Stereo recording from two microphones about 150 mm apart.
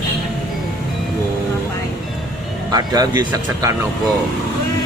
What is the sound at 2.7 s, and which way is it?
Speech, 25° right (ahead or behind).